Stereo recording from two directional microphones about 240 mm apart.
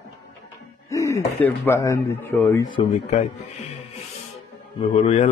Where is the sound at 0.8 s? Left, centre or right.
Centre.